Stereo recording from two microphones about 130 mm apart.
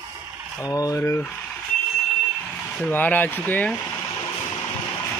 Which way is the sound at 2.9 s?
15° left (ahead or behind).